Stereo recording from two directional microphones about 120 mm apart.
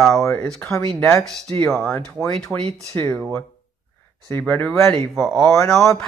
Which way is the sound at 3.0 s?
20° left (ahead or behind).